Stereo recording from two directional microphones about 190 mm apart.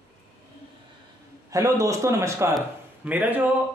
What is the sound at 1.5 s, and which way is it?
Speech, 15° right (ahead or behind).